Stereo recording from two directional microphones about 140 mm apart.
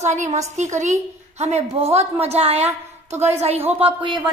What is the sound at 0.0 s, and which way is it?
A woman's voice, 55° right (ahead or behind).